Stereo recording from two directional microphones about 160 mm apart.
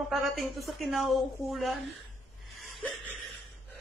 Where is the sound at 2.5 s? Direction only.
Centre (ahead or behind).